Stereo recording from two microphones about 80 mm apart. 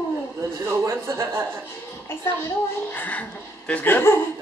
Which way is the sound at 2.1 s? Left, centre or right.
Left.